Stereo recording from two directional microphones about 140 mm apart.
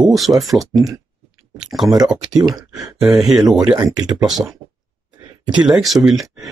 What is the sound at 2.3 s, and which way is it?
Speech, 30° right (ahead or behind).